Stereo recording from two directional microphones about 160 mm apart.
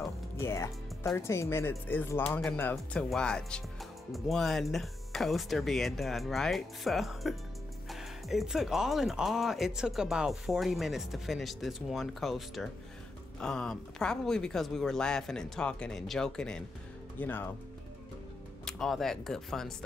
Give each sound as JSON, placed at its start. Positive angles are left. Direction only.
{"t": 0.4, "sound": "speech", "side_deg": 15}
{"t": 18.7, "sound": "speech", "side_deg": 0}